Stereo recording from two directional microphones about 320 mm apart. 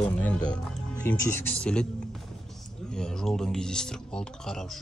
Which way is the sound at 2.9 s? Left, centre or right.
Centre.